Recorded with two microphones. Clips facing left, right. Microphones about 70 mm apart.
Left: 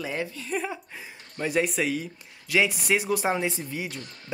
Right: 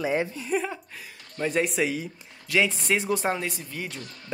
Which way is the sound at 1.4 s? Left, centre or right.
Centre.